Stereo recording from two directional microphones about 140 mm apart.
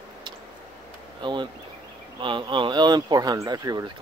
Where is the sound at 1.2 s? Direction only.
35° right (ahead or behind).